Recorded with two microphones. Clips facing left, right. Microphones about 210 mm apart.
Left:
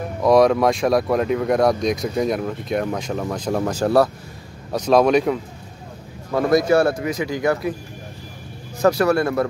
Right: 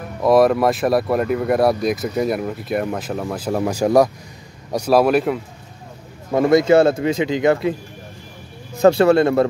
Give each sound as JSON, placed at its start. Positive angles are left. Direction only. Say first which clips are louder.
{"t": 0.2, "sound": "speech", "louder": "right 1 dB", "side_deg": -5}
{"t": 6.3, "sound": "speech", "louder": "right 3 dB", "side_deg": -25}
{"t": 8.8, "sound": "speech", "louder": "right 4 dB", "side_deg": -25}